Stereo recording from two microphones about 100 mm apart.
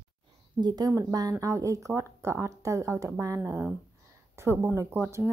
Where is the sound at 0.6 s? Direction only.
45° right (ahead or behind).